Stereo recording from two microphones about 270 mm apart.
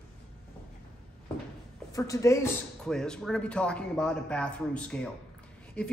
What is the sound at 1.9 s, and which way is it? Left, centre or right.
Speech, centre.